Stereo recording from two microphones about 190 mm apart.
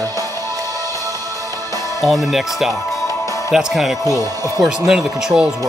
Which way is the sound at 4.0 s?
15° left (ahead or behind).